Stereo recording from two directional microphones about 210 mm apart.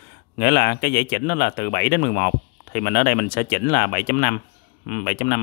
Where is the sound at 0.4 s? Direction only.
50° left (ahead or behind).